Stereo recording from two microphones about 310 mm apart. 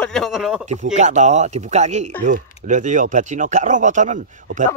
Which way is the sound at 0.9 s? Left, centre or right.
Right.